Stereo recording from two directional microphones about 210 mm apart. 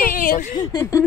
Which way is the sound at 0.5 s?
15° left (ahead or behind).